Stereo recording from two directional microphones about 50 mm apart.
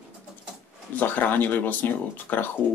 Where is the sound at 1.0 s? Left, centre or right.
Left.